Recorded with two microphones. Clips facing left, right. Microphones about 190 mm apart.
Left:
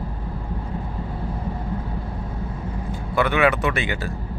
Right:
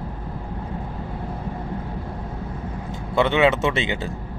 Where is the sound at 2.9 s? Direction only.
25° right (ahead or behind).